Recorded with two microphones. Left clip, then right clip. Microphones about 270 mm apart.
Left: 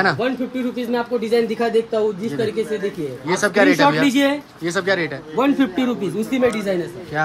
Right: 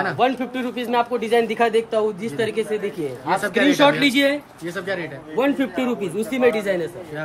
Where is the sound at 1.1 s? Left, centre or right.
Right.